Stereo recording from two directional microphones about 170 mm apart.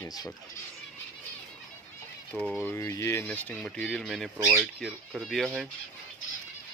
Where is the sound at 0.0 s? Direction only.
20° left (ahead or behind).